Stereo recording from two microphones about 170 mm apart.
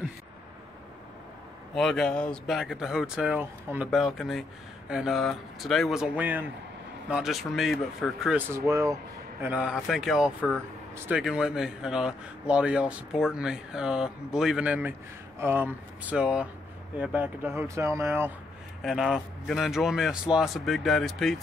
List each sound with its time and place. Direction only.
1.8 s speech: 5° left (ahead or behind); by 8.9 s 15° right (ahead or behind)
9.4 s speech: 5° right (ahead or behind)
18.8 s speech: centre (ahead or behind)